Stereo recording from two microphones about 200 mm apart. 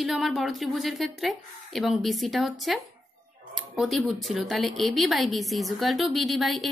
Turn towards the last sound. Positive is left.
turn(degrees=0)  # may be behind; listen again after turning